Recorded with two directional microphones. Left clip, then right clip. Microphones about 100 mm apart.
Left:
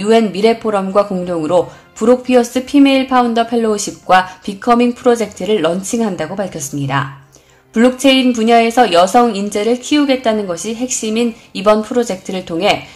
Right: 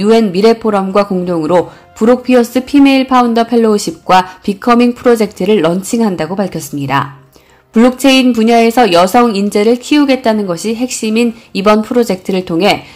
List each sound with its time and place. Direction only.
0.0 s speech: 35° right (ahead or behind)